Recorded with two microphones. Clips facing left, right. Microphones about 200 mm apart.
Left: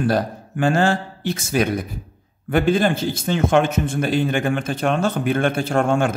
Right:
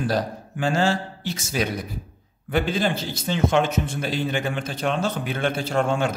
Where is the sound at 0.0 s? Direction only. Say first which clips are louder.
Left 4 dB; 55° left (ahead or behind).